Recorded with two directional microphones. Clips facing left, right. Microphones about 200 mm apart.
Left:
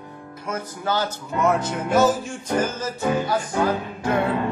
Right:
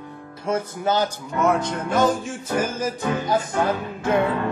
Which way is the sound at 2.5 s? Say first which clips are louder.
Even; 10° right (ahead or behind).